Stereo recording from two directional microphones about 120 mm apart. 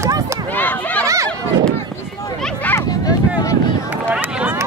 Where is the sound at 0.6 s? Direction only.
15° left (ahead or behind).